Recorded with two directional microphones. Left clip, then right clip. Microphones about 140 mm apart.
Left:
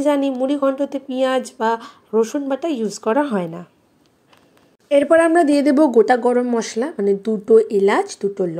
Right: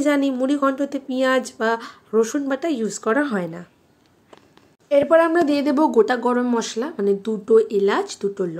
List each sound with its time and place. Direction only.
0.0 s speech: centre (ahead or behind)
4.8 s speech: 25° left (ahead or behind)
8.1 s speech: 15° left (ahead or behind)